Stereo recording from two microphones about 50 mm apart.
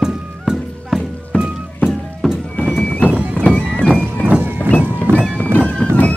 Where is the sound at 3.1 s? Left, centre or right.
Right.